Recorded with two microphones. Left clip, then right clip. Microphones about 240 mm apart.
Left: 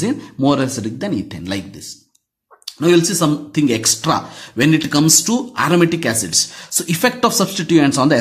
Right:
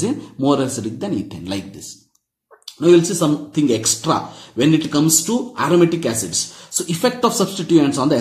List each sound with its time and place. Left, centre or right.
0.0 s speech: left
2.6 s a sound: left
3.2 s speech: left